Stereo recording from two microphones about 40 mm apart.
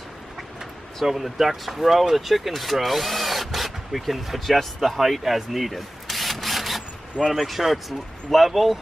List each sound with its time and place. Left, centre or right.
1.0 s speech: centre
4.7 s rub: centre
7.3 s speech: centre